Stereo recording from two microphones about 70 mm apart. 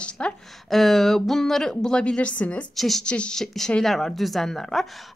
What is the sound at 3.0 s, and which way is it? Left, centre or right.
A woman's voice, centre.